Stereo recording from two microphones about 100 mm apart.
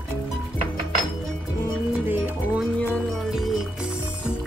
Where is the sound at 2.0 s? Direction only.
15° right (ahead or behind).